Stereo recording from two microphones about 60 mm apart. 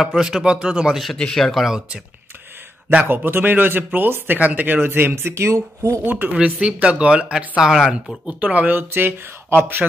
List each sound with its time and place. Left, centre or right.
0.0 s speech: centre
1.1 s speech: centre
1.5 s speech: centre
3.3 s speech: right
5.3 s speech: right
6.0 s speech: right
6.3 s speech: centre
8.3 s speech: right